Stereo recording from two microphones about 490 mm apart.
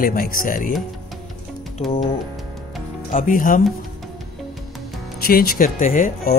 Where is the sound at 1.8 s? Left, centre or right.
Centre.